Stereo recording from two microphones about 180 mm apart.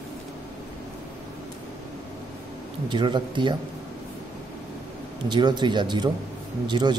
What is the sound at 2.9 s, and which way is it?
Speech, 25° right (ahead or behind).